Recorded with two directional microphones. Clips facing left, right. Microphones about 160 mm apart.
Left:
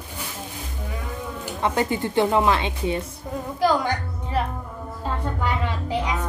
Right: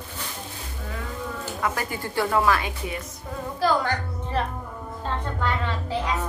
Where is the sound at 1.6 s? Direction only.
25° left (ahead or behind).